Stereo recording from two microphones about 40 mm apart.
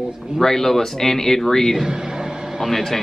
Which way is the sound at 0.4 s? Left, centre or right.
Centre.